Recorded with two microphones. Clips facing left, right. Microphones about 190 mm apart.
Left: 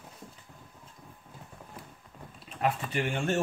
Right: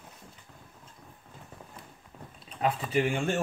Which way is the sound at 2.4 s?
Centre (ahead or behind).